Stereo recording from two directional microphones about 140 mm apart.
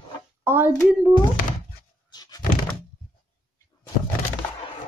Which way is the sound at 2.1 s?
30° left (ahead or behind).